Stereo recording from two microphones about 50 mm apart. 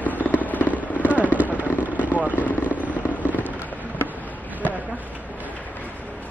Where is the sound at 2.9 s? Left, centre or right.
Right.